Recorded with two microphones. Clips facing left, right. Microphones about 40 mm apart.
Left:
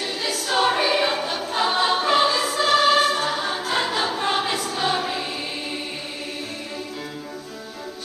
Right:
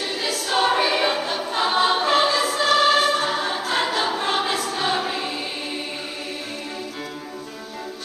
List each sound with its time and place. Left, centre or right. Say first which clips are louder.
0.0 s choir: right 1 dB; centre